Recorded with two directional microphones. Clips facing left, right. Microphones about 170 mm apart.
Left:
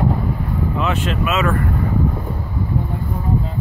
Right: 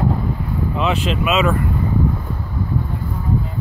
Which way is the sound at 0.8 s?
15° right (ahead or behind).